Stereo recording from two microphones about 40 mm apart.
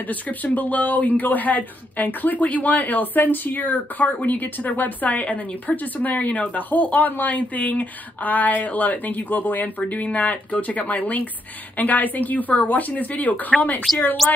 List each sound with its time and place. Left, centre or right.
0.1 s speech: left
13.9 s a woman's voice: centre